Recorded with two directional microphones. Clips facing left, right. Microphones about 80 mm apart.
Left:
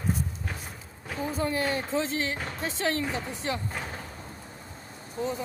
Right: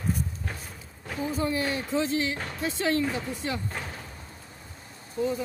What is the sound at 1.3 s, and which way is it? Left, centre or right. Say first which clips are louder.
Speech: even; left.